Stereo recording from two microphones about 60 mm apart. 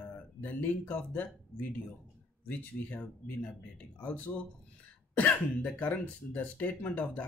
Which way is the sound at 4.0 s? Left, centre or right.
Left.